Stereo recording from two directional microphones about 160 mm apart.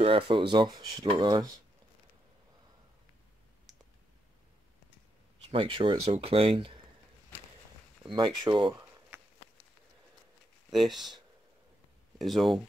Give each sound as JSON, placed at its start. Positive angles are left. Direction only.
{"t": 0.0, "sound": "speech", "side_deg": -35}
{"t": 5.5, "sound": "speech", "side_deg": -35}
{"t": 8.1, "sound": "speech", "side_deg": -30}
{"t": 10.7, "sound": "speech", "side_deg": 0}
{"t": 12.2, "sound": "speech", "side_deg": 0}